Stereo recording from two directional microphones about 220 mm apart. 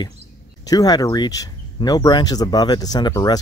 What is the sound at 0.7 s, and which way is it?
Speech, 15° left (ahead or behind).